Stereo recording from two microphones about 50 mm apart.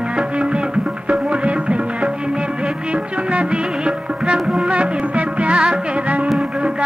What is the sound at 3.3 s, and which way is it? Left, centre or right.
Music, right.